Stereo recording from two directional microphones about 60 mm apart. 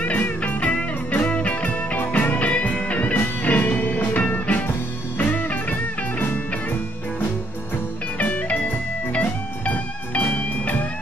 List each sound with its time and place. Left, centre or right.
0.0 s music: left
8.2 s music: left